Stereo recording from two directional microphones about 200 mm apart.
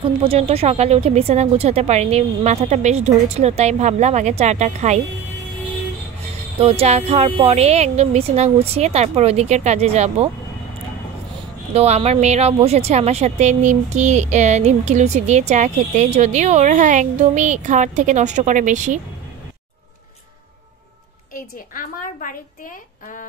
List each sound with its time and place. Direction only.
0.0 s a woman's voice: 30° right (ahead or behind)
6.6 s a woman's voice: 30° right (ahead or behind)
11.7 s a woman's voice: 30° right (ahead or behind)
21.3 s a woman's voice: 45° left (ahead or behind)